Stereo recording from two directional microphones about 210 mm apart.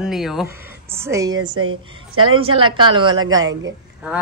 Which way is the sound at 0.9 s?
15° right (ahead or behind).